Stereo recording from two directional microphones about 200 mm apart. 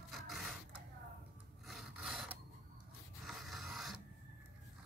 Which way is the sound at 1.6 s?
Centre (ahead or behind).